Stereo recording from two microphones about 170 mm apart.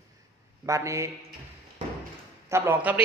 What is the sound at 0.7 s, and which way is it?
Speech, 15° right (ahead or behind).